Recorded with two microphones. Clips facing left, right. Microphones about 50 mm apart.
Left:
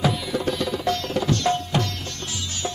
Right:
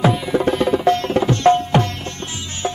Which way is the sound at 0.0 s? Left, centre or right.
Right.